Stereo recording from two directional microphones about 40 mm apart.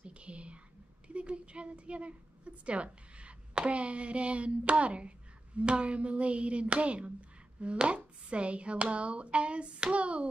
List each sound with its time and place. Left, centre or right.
0.0 s whispering: right
1.0 s a woman's voice: right